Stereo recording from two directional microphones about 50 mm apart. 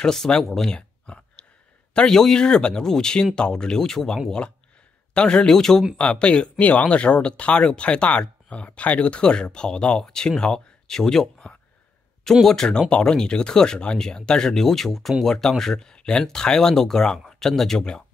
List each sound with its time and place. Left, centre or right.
0.0 s speech: centre
0.7 s a sound: left
2.0 s speech: centre
5.9 s speech: left
6.6 s speech: left; by 18.0 s centre